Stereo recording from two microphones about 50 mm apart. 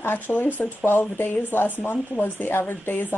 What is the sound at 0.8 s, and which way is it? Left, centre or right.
Speech, left.